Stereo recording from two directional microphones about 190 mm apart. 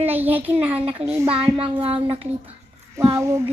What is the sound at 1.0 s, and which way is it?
Child singing, 35° right (ahead or behind).